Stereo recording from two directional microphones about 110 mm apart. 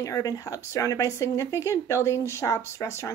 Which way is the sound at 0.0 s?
35° left (ahead or behind).